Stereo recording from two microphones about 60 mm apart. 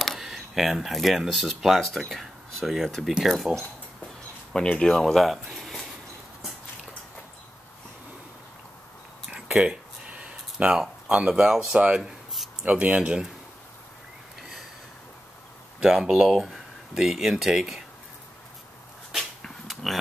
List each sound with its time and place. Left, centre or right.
0.0 s speech: centre
1.8 s speech: centre
4.7 s speech: centre
9.5 s a sound: centre
10.8 s speech: centre
15.8 s speech: centre
19.1 s dog: centre